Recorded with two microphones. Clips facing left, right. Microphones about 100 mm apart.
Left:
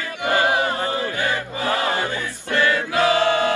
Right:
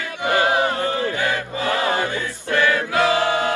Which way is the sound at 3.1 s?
15° right (ahead or behind).